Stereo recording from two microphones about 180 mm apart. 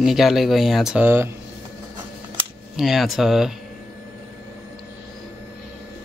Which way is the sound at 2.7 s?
Centre (ahead or behind).